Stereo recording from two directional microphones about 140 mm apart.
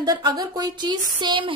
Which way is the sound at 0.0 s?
30° right (ahead or behind).